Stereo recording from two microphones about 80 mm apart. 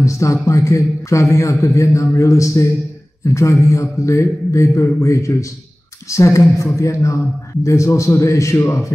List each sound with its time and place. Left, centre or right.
0.0 s a man's voice: left